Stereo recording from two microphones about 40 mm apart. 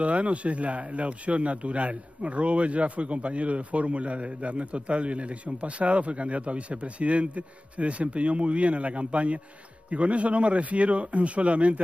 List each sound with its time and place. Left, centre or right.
0.0 s a man's voice: right